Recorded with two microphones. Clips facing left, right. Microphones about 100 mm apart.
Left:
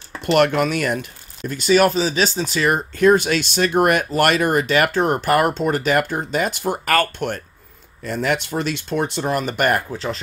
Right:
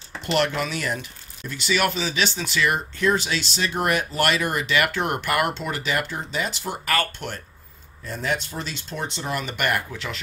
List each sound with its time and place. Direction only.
0.3 s speech: 55° left (ahead or behind)
8.0 s speech: 70° left (ahead or behind); by 10.2 s 35° left (ahead or behind)